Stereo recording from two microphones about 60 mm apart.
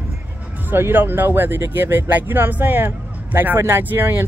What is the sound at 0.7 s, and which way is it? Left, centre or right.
Speech, right.